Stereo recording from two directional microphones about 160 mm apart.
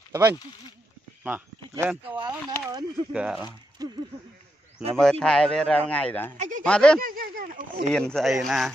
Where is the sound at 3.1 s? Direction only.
5° right (ahead or behind).